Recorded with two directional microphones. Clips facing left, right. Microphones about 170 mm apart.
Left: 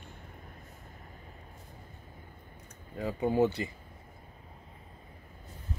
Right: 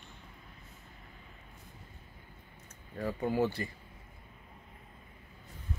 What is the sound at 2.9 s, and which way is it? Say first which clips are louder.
Speech: left 3 dB; 15° left (ahead or behind).